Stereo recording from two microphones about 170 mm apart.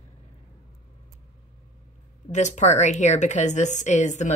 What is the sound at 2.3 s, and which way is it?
A woman's voice, 45° left (ahead or behind).